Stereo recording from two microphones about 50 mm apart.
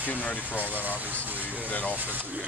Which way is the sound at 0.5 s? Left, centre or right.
Right.